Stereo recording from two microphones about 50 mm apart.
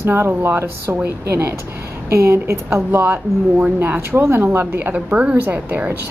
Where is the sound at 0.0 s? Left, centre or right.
Right.